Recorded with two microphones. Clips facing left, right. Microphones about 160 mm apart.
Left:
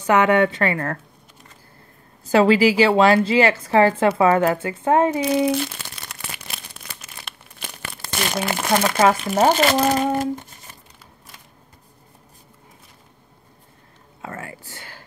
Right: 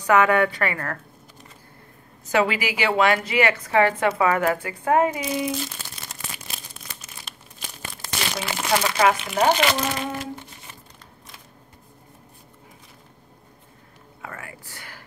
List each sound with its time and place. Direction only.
0.0 s speech: 25° left (ahead or behind)
2.2 s a woman's voice: 30° left (ahead or behind)
5.2 s crumpling: 65° left (ahead or behind); by 10.8 s 45° left (ahead or behind)
14.2 s a sound: 25° left (ahead or behind)